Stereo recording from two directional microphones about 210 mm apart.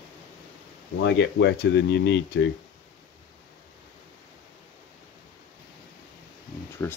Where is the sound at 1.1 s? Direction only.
55° left (ahead or behind).